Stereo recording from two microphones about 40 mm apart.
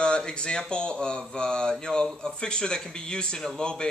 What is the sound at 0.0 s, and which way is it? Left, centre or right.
Speech, left.